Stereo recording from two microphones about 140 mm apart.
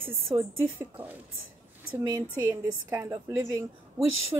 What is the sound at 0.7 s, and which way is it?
Speech, 10° right (ahead or behind).